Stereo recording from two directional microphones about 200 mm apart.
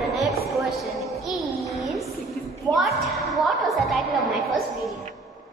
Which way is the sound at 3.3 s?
Centre (ahead or behind).